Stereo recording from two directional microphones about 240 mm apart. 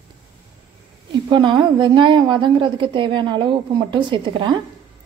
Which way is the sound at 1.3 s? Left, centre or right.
Centre.